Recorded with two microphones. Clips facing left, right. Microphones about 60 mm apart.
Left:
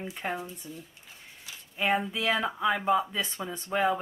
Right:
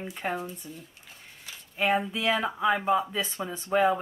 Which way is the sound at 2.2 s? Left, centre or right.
Centre.